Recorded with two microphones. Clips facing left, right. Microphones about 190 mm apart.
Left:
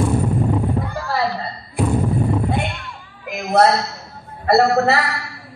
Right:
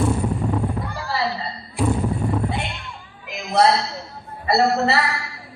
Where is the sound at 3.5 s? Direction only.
55° left (ahead or behind).